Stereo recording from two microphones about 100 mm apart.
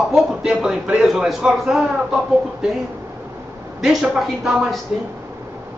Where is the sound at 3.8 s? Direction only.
5° right (ahead or behind).